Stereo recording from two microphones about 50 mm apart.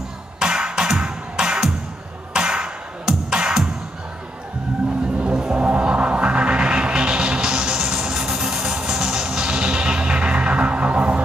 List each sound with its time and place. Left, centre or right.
0.4 s music: centre
5.2 s music: centre